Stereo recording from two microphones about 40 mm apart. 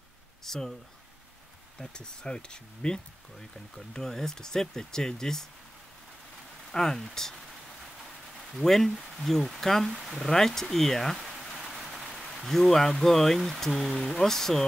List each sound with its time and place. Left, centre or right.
0.5 s speech: centre
1.8 s speech: centre
3.3 s speech: centre
6.7 s speech: centre
8.6 s speech: centre
11.1 s a sound: centre
11.7 s rain: centre
12.4 s speech: centre